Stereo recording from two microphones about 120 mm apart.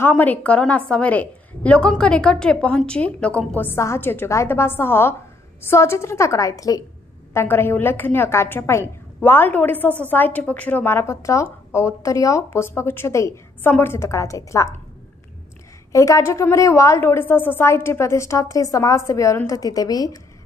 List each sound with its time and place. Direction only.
0.0 s a woman's voice: 15° left (ahead or behind)
15.9 s a woman's voice: 25° left (ahead or behind)